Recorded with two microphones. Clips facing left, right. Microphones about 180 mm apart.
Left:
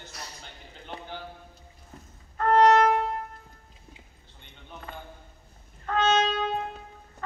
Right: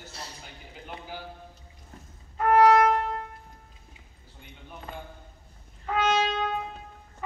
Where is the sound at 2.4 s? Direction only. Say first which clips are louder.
Even; 10° right (ahead or behind).